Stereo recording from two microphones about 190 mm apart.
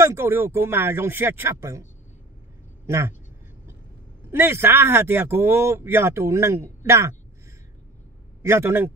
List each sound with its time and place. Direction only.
0.0 s speech: 15° right (ahead or behind)
2.9 s speech: 15° right (ahead or behind)
4.3 s speech: 15° right (ahead or behind)
8.4 s speech: 15° right (ahead or behind)